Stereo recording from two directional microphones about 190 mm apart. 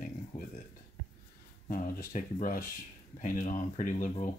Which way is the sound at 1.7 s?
45° left (ahead or behind).